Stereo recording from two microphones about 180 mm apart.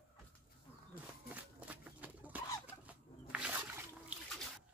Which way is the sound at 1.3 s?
10° right (ahead or behind).